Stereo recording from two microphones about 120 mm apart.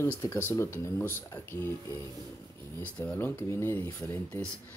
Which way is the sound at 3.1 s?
15° left (ahead or behind).